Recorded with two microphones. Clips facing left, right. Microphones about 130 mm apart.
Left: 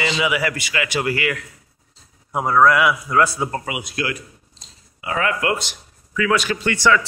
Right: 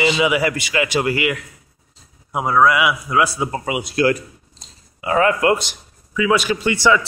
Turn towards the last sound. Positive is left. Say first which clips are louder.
# right 2 dB
turn(degrees=-15)  # may be behind; listen again after turning